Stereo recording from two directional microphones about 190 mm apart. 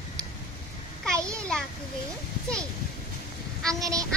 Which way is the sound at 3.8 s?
20° right (ahead or behind).